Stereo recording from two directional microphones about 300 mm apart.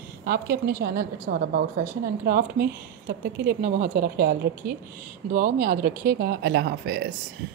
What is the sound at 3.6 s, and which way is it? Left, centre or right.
Speech, right.